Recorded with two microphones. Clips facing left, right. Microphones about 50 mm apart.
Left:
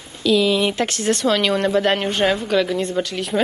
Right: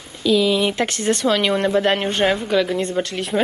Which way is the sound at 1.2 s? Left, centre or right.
Centre.